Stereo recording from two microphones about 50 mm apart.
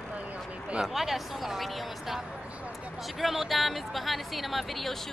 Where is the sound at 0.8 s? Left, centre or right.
Centre.